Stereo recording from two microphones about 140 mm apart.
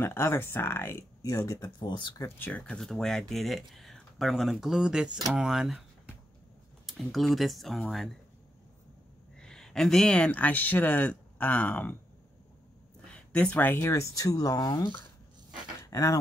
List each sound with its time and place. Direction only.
0.0 s speech: 15° left (ahead or behind); by 2.2 s 30° left (ahead or behind)
2.2 s speech: 15° left (ahead or behind)
6.9 s speech: centre (ahead or behind)
9.4 s speech: 5° left (ahead or behind)
13.1 s speech: 10° left (ahead or behind)